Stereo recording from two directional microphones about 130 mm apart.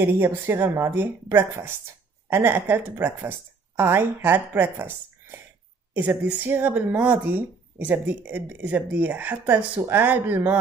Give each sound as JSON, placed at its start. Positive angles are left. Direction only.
{"t": 0.0, "sound": "speech", "side_deg": -15}
{"t": 5.9, "sound": "speech", "side_deg": -15}